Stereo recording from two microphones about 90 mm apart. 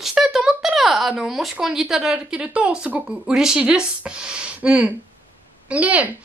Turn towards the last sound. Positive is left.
turn(degrees=-15)  # may be behind; listen again after turning